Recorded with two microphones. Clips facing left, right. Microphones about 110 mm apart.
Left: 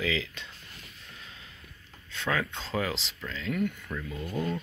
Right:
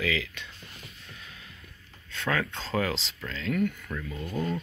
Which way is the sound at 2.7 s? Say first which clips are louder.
Right 3 dB; centre (ahead or behind).